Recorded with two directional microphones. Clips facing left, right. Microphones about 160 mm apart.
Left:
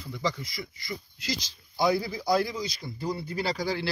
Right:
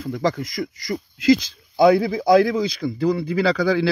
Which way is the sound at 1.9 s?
60° right (ahead or behind).